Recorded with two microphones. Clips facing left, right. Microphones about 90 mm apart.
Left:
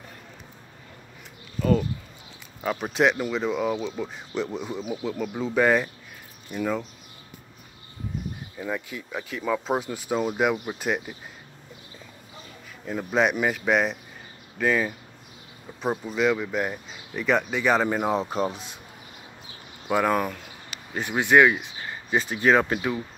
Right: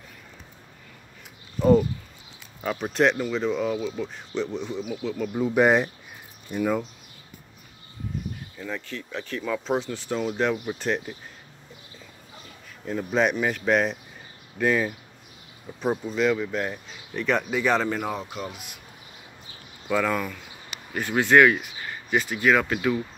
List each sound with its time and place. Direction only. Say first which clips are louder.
2.6 s speech: even; centre (ahead or behind)
3.7 s speech: right 1 dB; 20° left (ahead or behind)
4.0 s speech: even; 5° left (ahead or behind)
5.4 s speech: right 2 dB; 15° right (ahead or behind)
6.6 s speech: right 2 dB; 5° right (ahead or behind)
8.5 s speech: left 3 dB; 15° left (ahead or behind)
10.8 s speech: even; 5° left (ahead or behind)
12.8 s speech: even; centre (ahead or behind)
17.8 s speech: left 3 dB; 20° left (ahead or behind)
18.1 s speech: left 7 dB; 35° left (ahead or behind)
19.9 s speech: left 2 dB; 25° left (ahead or behind)